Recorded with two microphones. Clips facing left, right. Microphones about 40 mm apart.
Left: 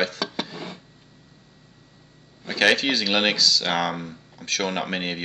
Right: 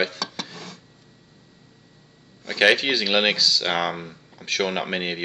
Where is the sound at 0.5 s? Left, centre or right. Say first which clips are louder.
Left 4 dB; left.